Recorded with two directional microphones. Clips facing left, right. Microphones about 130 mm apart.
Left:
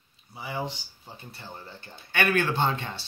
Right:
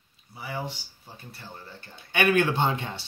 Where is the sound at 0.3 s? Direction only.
20° left (ahead or behind).